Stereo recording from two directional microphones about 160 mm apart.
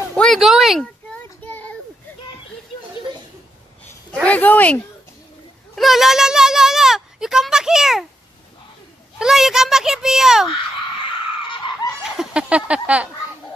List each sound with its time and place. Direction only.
0.1 s child singing: 5° left (ahead or behind)
4.1 s speech: 10° left (ahead or behind)
5.8 s a child's voice: centre (ahead or behind)
9.2 s a child's voice: 5° right (ahead or behind)
11.4 s screaming: 30° left (ahead or behind)
12.0 s speech: 5° right (ahead or behind)